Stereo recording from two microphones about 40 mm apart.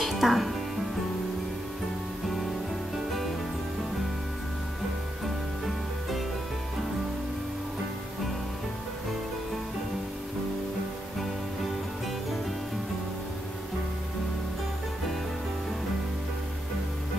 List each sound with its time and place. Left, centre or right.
0.0 s music: centre